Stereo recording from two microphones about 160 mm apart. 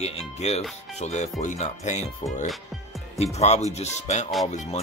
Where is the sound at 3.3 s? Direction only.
45° left (ahead or behind).